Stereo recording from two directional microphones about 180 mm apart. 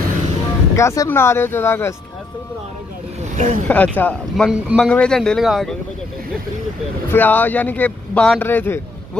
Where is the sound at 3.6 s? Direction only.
10° left (ahead or behind).